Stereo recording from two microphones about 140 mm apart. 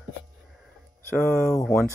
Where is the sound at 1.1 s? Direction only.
5° left (ahead or behind).